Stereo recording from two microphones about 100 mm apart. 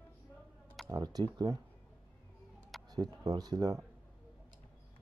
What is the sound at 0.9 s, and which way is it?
Speech, 40° right (ahead or behind).